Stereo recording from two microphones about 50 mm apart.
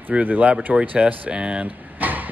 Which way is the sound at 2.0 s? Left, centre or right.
Right.